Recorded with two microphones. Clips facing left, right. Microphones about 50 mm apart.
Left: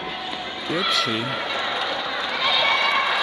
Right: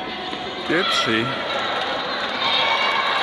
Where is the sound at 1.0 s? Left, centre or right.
Right.